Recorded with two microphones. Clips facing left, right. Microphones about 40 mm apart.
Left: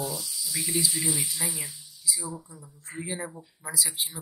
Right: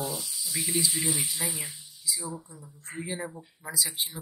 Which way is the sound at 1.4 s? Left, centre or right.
Right.